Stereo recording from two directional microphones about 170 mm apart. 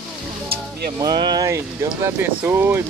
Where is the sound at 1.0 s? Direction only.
25° right (ahead or behind).